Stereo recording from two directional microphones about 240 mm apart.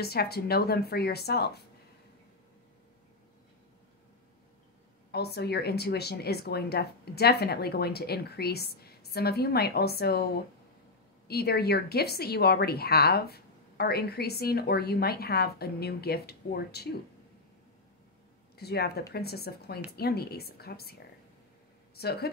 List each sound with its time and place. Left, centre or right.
0.0 s a woman's voice: left
5.1 s a woman's voice: left
18.6 s a woman's voice: left
21.9 s speech: left